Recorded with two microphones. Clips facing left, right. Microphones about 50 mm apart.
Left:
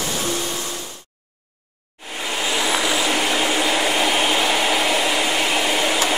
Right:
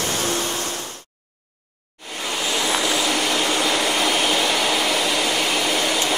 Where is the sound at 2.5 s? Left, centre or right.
Centre.